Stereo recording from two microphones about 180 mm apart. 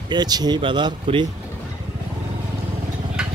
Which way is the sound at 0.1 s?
20° right (ahead or behind).